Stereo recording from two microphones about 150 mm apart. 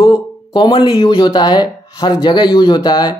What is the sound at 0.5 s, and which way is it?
Speech, 30° left (ahead or behind).